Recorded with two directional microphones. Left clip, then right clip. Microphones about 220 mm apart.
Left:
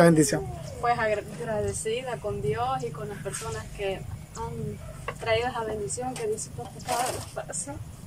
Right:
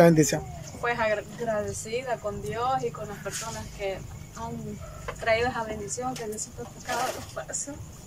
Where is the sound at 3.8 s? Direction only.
10° left (ahead or behind).